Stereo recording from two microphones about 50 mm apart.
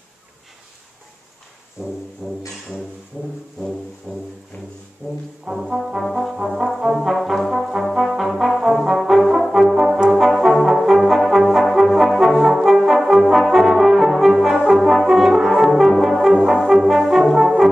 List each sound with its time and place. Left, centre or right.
1.8 s brass instrument: centre
3.1 s brass instrument: centre
4.1 s music: centre
5.5 s brass instrument: centre